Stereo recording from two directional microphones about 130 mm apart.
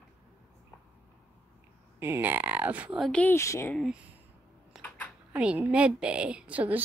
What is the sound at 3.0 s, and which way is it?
Speech, 10° left (ahead or behind).